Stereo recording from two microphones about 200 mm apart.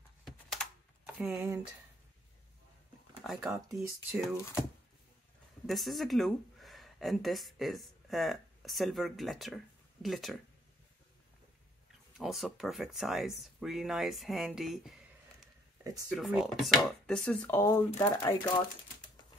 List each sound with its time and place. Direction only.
0.2 s typing: centre (ahead or behind)
3.7 s speech: centre (ahead or behind)
5.7 s speech: centre (ahead or behind)
12.2 s speech: centre (ahead or behind)
16.1 s speech: centre (ahead or behind); by 18.5 s 15° left (ahead or behind)